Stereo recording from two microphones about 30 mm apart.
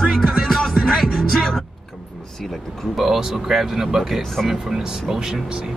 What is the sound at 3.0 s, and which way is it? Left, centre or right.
Speech, centre.